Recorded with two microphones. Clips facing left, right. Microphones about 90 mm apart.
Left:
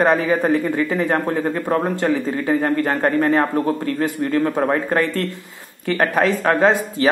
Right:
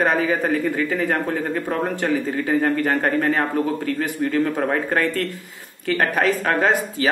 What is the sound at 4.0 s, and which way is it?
Speech, 25° left (ahead or behind).